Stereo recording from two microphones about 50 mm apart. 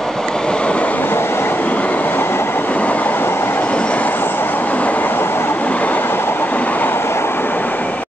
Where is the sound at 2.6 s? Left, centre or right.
Left.